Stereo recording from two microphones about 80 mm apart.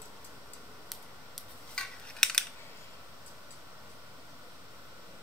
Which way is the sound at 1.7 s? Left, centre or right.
Centre.